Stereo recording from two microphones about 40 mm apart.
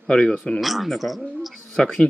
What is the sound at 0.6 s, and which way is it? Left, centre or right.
Speech, centre.